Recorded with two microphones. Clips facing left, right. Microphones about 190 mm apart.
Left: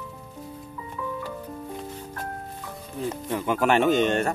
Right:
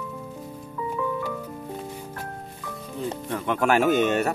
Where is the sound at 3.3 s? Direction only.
5° left (ahead or behind).